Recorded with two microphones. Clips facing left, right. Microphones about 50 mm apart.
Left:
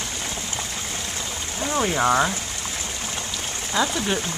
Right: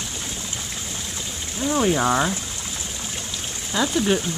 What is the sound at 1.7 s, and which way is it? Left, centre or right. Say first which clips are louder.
Speech: right 1 dB; centre.